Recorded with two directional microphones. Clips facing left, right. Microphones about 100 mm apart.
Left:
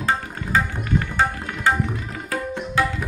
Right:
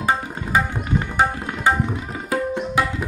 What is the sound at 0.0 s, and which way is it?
Tabla, 15° right (ahead or behind).